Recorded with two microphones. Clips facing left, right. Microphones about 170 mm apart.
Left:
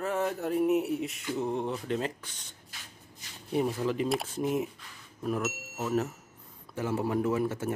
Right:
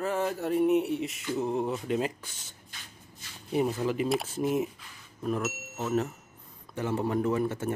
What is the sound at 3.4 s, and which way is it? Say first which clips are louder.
Speech: right 1 dB; centre (ahead or behind).